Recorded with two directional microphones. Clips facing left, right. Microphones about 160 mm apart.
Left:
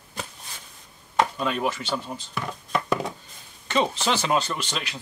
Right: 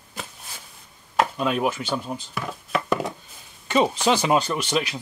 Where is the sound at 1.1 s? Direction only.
5° right (ahead or behind).